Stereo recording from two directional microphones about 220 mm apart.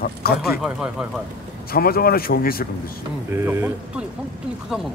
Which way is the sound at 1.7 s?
45° left (ahead or behind).